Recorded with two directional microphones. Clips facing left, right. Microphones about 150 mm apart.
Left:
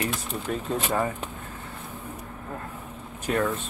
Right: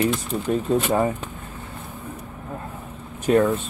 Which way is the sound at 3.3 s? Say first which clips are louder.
Right 8 dB; 25° right (ahead or behind).